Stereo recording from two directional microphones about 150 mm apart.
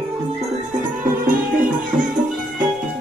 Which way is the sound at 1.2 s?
65° right (ahead or behind).